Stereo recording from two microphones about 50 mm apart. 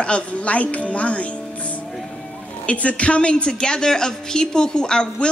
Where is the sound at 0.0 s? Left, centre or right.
Left.